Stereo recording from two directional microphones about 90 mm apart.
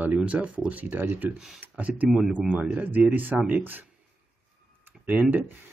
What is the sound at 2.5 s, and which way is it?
Speech, 20° right (ahead or behind).